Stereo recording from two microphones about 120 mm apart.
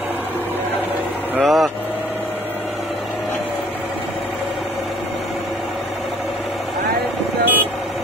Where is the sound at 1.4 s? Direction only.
Centre (ahead or behind).